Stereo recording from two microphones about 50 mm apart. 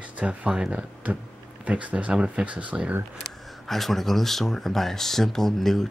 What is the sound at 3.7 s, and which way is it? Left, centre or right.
Speech, centre.